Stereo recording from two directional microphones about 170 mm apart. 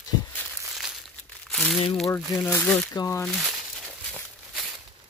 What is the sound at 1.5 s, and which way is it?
Speech, centre (ahead or behind).